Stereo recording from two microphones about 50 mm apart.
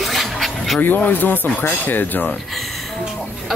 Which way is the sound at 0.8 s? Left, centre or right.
Left.